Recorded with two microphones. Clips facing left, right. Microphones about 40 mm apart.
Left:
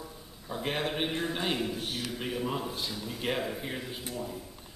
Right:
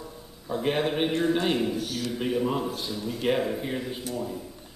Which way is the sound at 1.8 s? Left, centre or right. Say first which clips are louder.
Right 4 dB; left.